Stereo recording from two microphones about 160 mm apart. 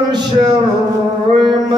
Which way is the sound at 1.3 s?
30° right (ahead or behind).